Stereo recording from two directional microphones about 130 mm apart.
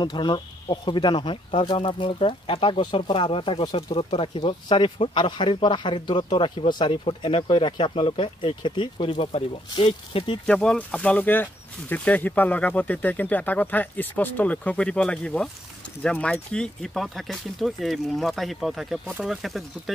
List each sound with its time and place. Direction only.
0.0 s speech: 35° left (ahead or behind)
10.4 s speech: 5° left (ahead or behind)